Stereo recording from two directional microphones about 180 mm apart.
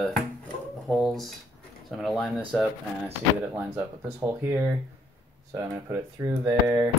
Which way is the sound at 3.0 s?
15° right (ahead or behind).